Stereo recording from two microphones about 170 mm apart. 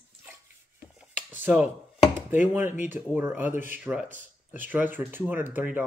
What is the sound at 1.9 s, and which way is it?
Chopping, 40° left (ahead or behind).